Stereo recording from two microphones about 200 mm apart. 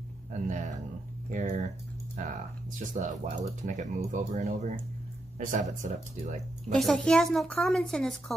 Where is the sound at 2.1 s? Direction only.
40° right (ahead or behind).